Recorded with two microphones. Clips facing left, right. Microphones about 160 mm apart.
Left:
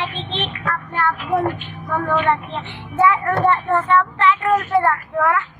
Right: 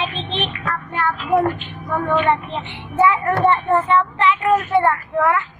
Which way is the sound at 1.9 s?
Centre (ahead or behind).